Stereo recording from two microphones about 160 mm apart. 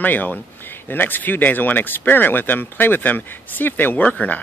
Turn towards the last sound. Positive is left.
turn(degrees=10)  # may be behind; listen again after turning